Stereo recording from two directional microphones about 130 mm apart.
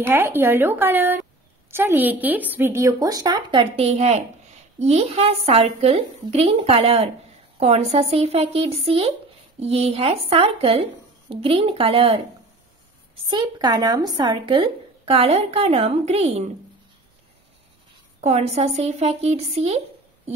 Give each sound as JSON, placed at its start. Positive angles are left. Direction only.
{"t": 0.0, "sound": "speech", "side_deg": -15}
{"t": 3.7, "sound": "speech", "side_deg": -55}
{"t": 18.2, "sound": "speech", "side_deg": -60}